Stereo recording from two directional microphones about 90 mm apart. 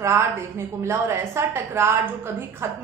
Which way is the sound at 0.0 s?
30° right (ahead or behind).